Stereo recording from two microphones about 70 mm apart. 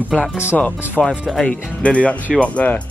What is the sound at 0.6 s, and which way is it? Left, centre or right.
Speech, centre.